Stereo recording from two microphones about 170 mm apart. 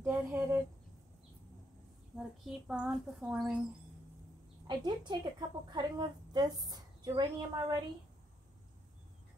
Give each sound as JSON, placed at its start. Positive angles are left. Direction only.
{"t": 0.0, "sound": "a sound", "side_deg": -15}
{"t": 2.1, "sound": "a child's voice", "side_deg": -5}
{"t": 4.6, "sound": "a woman's voice", "side_deg": -25}